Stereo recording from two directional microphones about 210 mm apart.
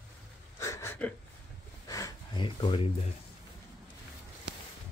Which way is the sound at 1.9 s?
20° left (ahead or behind).